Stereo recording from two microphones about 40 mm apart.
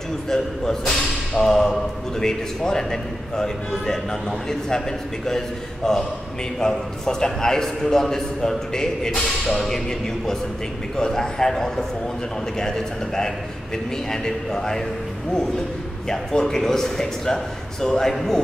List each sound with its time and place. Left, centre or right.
0.3 s a man's voice: centre
16.1 s a man's voice: centre